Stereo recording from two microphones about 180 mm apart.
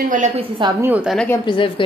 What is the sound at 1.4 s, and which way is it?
Speech, 30° left (ahead or behind).